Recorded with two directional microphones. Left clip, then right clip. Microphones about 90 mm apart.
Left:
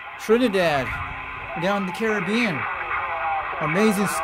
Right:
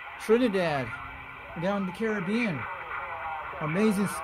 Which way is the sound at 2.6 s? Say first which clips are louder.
Left 9 dB; 20° left (ahead or behind).